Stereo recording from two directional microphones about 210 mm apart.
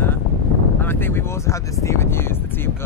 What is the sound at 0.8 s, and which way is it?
Speech, 10° left (ahead or behind).